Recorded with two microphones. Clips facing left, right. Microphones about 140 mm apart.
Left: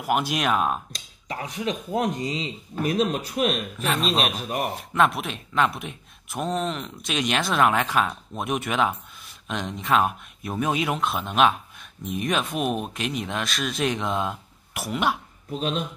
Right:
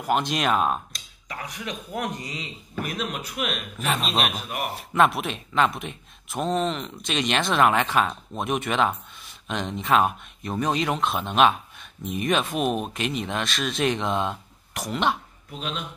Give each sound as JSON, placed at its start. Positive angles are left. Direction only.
{"t": 0.0, "sound": "speech", "side_deg": 5}
{"t": 0.9, "sound": "speech", "side_deg": 25}
{"t": 3.8, "sound": "speech", "side_deg": 0}